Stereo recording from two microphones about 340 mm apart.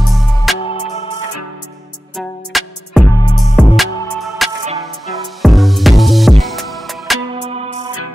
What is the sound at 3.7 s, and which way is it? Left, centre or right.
Music, centre.